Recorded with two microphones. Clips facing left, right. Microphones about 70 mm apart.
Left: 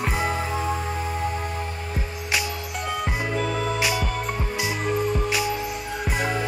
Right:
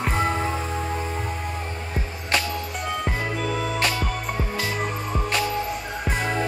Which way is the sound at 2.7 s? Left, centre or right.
Centre.